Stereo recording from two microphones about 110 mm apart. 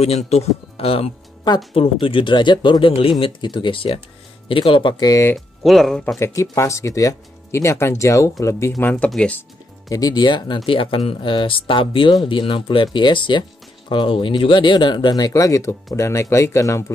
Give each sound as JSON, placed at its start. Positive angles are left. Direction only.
{"t": 0.0, "sound": "speech", "side_deg": 75}
{"t": 4.9, "sound": "speech", "side_deg": 35}
{"t": 5.3, "sound": "speech", "side_deg": 0}
{"t": 6.1, "sound": "speech", "side_deg": 25}
{"t": 8.9, "sound": "speech", "side_deg": 10}
{"t": 9.8, "sound": "speech", "side_deg": 35}